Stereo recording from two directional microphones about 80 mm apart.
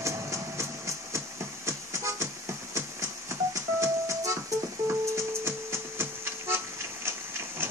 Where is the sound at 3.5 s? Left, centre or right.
Right.